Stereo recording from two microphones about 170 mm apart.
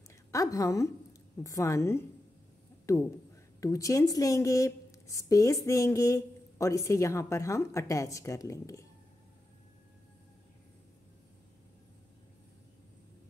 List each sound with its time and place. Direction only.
0.1 s a woman's voice: 20° left (ahead or behind)